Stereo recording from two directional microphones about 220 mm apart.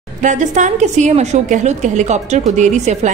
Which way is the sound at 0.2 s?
35° right (ahead or behind).